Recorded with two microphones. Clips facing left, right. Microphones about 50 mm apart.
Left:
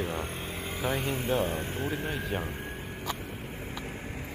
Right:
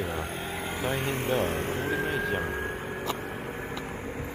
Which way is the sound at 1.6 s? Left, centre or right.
Right.